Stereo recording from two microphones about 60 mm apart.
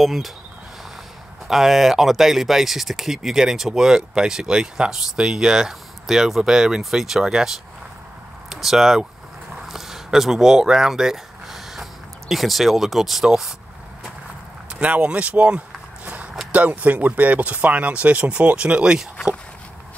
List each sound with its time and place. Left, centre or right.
0.0 s speech: centre
1.5 s speech: centre
14.8 s speech: centre